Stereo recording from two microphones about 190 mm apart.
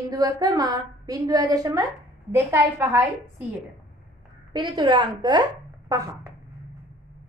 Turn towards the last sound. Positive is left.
turn(degrees=-20)  # may be behind; listen again after turning